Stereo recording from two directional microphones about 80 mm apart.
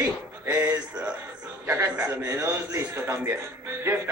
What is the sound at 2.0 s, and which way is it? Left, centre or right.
A man's voice, right.